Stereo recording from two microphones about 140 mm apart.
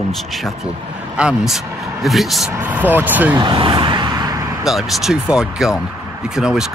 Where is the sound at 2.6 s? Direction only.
10° right (ahead or behind).